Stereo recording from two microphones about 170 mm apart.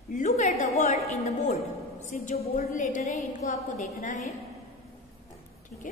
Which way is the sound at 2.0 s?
50° left (ahead or behind).